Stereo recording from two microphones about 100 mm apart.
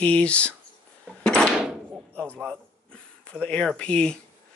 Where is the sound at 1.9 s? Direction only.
20° right (ahead or behind).